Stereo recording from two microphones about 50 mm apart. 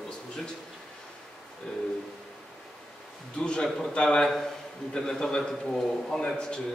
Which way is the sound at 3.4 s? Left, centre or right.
Centre.